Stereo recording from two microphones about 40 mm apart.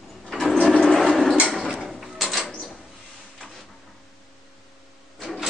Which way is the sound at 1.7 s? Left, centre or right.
Centre.